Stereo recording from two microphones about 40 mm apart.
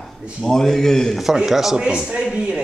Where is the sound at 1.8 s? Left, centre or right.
Right.